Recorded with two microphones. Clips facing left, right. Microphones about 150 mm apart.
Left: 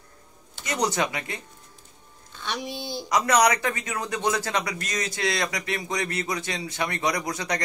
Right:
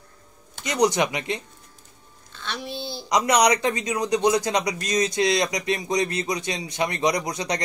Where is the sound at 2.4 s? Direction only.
15° left (ahead or behind).